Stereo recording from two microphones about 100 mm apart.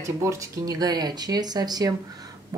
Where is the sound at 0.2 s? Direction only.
30° right (ahead or behind).